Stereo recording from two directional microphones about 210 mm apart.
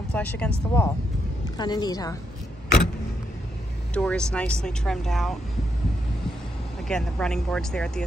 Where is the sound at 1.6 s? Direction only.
20° left (ahead or behind).